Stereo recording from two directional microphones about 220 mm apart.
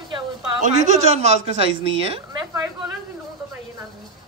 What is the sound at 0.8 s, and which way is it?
A woman's voice, 30° right (ahead or behind).